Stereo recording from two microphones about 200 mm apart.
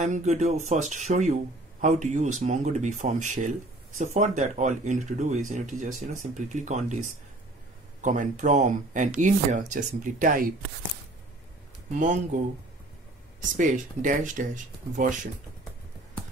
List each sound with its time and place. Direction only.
0.0 s speech: 35° right (ahead or behind)
11.9 s speech: 40° right (ahead or behind)
13.6 s speech: 40° right (ahead or behind)